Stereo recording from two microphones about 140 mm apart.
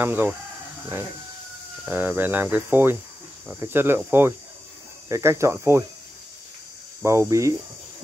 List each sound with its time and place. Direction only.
0.0 s cricket: 15° right (ahead or behind)
1.9 s cricket: 15° right (ahead or behind)
5.1 s speech: 20° right (ahead or behind)
7.0 s speech: 20° right (ahead or behind)